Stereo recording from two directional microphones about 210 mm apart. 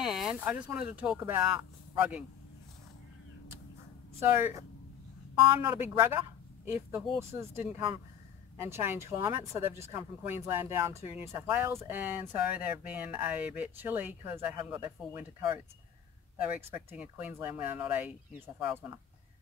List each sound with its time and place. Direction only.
0.0 s speech: centre (ahead or behind)
4.4 s a man's voice: 10° right (ahead or behind)